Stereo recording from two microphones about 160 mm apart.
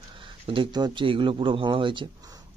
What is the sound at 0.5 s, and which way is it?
Speech, 30° right (ahead or behind).